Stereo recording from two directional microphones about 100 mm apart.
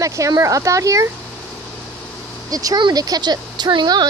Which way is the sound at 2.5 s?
35° right (ahead or behind).